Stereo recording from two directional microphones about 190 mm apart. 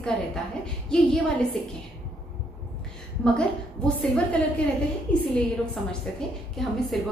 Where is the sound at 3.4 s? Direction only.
5° left (ahead or behind).